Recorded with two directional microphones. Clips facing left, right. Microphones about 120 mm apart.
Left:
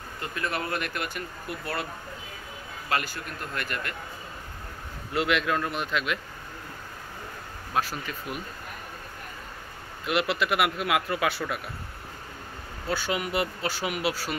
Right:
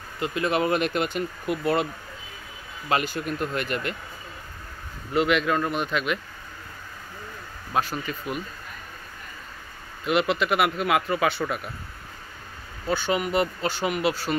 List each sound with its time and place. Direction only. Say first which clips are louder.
0.2 s speech: right 8 dB; 20° right (ahead or behind)
2.9 s speech: right 5 dB; 20° right (ahead or behind)
5.1 s speech: right 4 dB; centre (ahead or behind)
7.7 s speech: right 3 dB; centre (ahead or behind)
10.0 s speech: right 3 dB; 5° left (ahead or behind)
12.9 s speech: right 4 dB; 5° left (ahead or behind)